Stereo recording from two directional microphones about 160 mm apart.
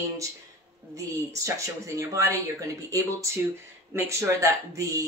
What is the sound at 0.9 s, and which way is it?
Speech, 20° right (ahead or behind).